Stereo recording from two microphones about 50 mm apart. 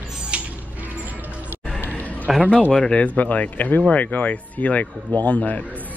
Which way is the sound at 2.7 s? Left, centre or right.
Centre.